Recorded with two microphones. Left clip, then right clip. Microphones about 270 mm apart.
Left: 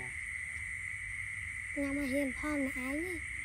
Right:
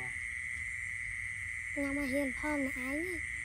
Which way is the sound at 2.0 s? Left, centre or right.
Centre.